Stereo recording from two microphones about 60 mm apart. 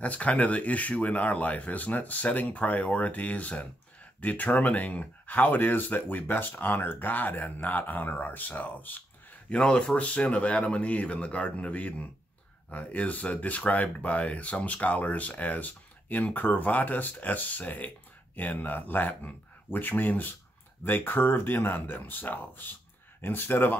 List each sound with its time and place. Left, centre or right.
0.0 s speech: left
9.5 s speech: centre; by 23.8 s left